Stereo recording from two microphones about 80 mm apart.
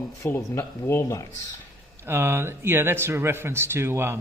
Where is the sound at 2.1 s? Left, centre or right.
Right.